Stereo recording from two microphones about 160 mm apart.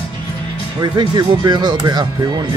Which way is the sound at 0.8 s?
30° right (ahead or behind).